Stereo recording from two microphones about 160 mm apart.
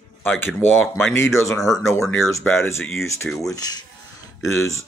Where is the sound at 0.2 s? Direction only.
10° left (ahead or behind).